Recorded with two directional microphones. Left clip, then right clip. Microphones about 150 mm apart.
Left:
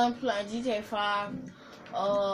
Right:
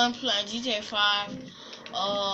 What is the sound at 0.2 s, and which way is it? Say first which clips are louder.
A woman's voice: right 3 dB; 50° left (ahead or behind).